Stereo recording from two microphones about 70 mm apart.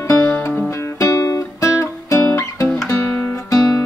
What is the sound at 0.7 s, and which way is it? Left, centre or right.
Music, left.